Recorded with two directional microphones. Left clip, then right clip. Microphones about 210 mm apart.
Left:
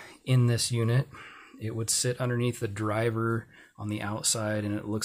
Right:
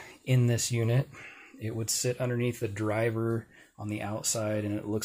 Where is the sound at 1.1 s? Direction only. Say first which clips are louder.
Left 1 dB; 15° left (ahead or behind).